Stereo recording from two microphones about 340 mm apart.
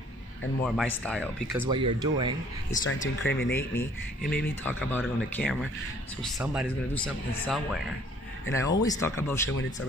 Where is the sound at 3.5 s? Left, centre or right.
Centre.